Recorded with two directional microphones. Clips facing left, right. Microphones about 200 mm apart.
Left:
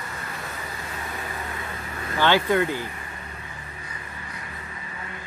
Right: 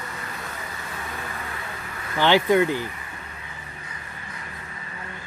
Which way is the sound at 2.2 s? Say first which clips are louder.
Right 2 dB; 15° right (ahead or behind).